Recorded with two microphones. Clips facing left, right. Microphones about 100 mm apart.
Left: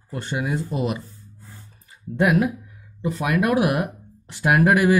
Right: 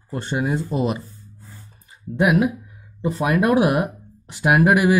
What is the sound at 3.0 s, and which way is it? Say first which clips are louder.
Speech: right 3 dB; 30° right (ahead or behind).